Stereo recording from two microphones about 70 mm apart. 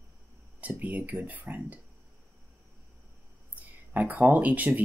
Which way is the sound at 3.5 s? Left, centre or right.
Right.